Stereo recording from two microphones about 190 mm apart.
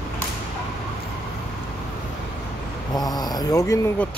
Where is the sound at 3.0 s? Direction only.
20° left (ahead or behind).